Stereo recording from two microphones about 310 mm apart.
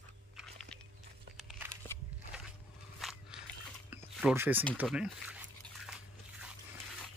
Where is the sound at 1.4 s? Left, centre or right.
Centre.